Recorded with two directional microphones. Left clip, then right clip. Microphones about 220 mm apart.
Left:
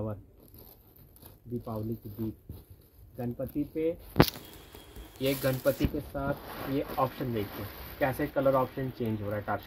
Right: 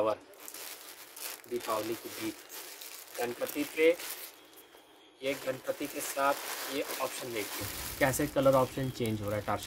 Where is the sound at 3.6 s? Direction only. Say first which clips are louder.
Left 5 dB; 15° right (ahead or behind).